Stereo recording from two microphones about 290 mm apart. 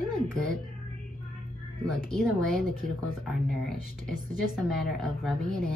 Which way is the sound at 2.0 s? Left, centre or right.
Centre.